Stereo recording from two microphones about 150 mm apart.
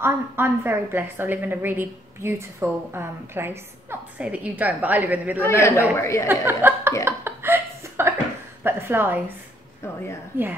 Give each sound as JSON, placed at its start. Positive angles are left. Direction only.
{"t": 0.0, "sound": "a woman's voice", "side_deg": -15}
{"t": 5.4, "sound": "a man's voice", "side_deg": 20}
{"t": 6.4, "sound": "a woman's voice", "side_deg": -15}
{"t": 7.1, "sound": "chuckle", "side_deg": -15}
{"t": 8.6, "sound": "a woman's voice", "side_deg": -15}
{"t": 9.8, "sound": "a woman's voice", "side_deg": 15}
{"t": 10.3, "sound": "a woman's voice", "side_deg": -15}